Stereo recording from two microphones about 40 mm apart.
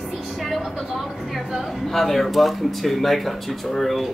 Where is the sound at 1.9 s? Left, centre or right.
Centre.